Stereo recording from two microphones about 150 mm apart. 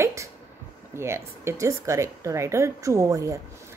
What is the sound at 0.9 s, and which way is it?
A woman's voice, 15° right (ahead or behind).